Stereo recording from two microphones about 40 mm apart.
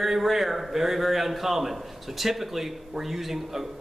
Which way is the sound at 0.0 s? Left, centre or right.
Centre.